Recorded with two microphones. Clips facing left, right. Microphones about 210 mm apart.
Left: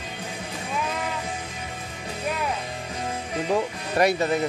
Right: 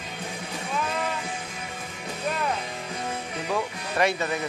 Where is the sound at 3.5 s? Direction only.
35° left (ahead or behind).